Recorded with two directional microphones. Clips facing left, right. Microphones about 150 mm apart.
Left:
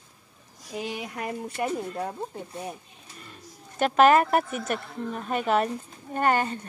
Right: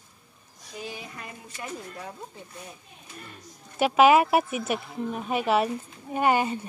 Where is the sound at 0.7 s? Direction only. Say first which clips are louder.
Left 5 dB; 75° left (ahead or behind).